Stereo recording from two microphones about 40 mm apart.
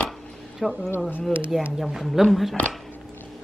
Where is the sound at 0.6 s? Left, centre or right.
Centre.